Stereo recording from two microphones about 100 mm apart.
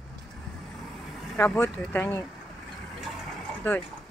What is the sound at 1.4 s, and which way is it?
Speech, 20° left (ahead or behind).